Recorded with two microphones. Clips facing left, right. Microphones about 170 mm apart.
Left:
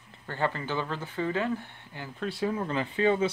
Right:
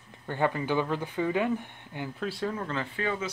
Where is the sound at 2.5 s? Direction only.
15° left (ahead or behind).